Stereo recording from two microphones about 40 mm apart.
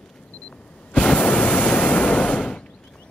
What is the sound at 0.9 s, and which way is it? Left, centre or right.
Waves, left.